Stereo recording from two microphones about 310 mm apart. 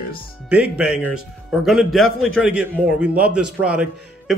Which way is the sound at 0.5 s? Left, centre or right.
Centre.